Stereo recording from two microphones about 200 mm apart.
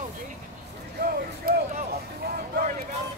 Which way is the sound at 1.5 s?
45° right (ahead or behind).